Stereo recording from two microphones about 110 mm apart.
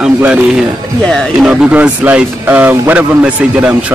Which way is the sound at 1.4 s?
10° right (ahead or behind).